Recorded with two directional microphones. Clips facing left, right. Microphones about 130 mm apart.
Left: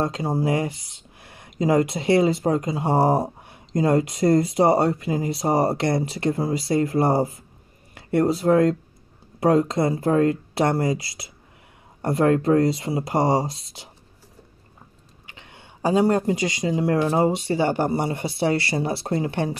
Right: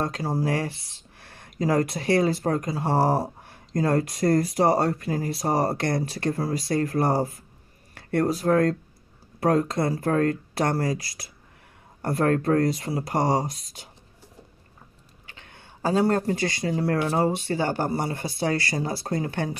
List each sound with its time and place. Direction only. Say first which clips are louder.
0.0 s speech: left 3 dB; 25° left (ahead or behind)
15.2 s speech: left 2 dB; 20° left (ahead or behind)